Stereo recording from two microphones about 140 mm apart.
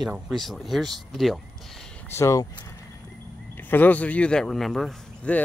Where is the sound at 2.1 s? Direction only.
20° left (ahead or behind).